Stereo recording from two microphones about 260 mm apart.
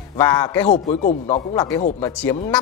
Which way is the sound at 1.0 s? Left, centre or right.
Left.